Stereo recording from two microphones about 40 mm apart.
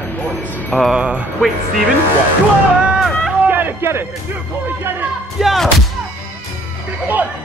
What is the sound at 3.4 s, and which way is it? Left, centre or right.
Music, right.